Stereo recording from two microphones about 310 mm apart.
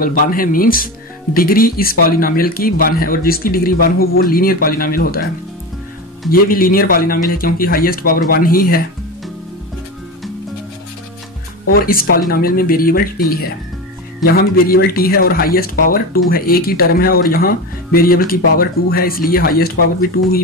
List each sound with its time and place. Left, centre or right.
0.0 s speech: left
6.3 s speech: left
11.7 s speech: left